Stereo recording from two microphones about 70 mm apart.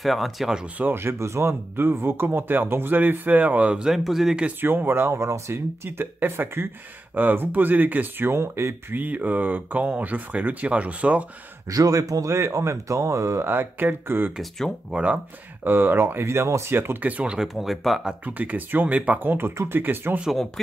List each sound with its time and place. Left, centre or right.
0.0 s speech: centre
0.7 s speech: right; by 4.5 s centre
4.5 s speech: right
8.9 s speech: right
11.7 s speech: right
14.9 s speech: centre
15.6 s speech: right
17.2 s speech: centre
17.6 s speech: centre
18.2 s speech: right